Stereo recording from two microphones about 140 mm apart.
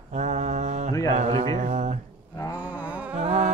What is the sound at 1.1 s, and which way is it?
Speech, 45° right (ahead or behind).